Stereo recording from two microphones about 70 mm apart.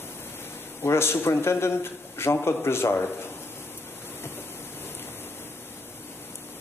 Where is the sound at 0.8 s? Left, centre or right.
Left.